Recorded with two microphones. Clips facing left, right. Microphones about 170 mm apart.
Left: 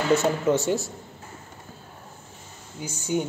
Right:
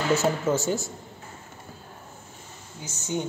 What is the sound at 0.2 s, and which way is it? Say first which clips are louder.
Speech: left 2 dB; centre (ahead or behind).